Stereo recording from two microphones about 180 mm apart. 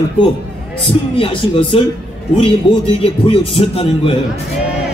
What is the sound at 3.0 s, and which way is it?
A man's voice, 30° left (ahead or behind).